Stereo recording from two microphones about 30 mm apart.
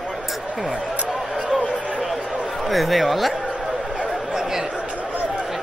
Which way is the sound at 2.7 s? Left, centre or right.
Centre.